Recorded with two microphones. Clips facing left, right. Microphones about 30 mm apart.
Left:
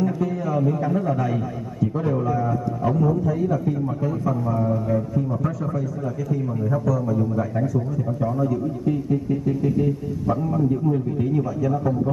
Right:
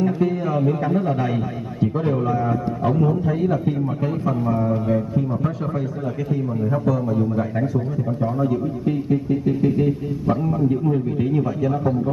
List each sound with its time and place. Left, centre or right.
0.0 s a man's voice: right